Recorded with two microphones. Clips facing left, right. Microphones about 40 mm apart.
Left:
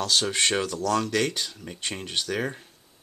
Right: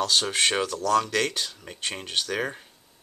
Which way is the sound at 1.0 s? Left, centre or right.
Right.